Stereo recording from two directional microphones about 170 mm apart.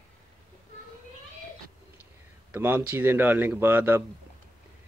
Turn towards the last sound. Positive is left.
turn(degrees=-15)  # may be behind; listen again after turning